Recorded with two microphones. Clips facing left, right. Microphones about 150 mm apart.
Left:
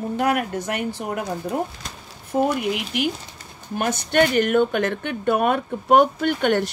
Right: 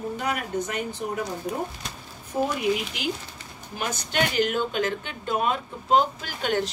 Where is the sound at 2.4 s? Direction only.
60° left (ahead or behind).